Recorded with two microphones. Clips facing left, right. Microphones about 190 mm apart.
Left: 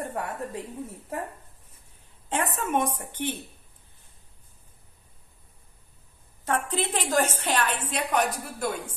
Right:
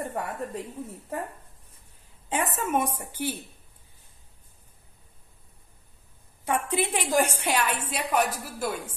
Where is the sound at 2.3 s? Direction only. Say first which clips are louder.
Even; 5° right (ahead or behind).